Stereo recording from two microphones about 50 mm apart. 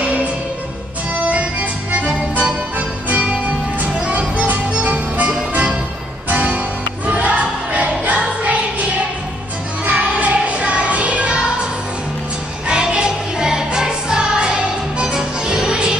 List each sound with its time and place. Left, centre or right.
0.0 s music: right
6.3 s music: right
9.8 s music: right
12.6 s music: centre